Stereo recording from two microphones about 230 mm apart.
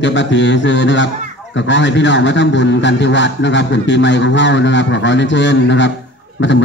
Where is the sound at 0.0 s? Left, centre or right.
Left.